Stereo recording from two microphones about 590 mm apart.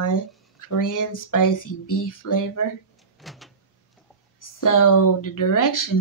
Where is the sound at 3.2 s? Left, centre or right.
Centre.